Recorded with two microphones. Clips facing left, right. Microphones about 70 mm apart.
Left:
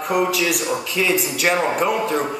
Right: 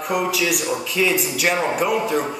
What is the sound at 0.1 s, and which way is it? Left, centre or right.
A man's voice, centre.